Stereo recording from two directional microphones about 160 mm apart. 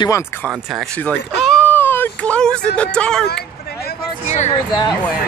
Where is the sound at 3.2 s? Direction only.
85° left.